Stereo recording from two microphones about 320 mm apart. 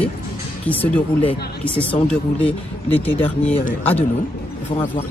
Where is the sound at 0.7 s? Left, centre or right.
Centre.